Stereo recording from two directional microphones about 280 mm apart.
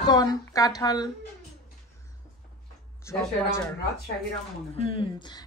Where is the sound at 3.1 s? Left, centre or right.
Centre.